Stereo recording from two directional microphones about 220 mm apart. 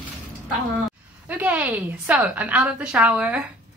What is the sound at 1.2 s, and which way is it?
A woman's voice, 5° right (ahead or behind).